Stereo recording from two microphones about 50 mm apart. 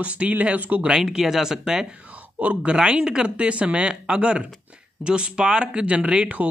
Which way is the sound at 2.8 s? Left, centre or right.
Centre.